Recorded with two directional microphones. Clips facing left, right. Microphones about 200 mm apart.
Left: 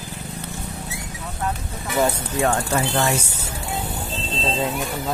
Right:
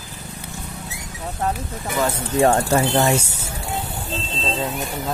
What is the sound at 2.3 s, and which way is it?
Speech, 35° right (ahead or behind).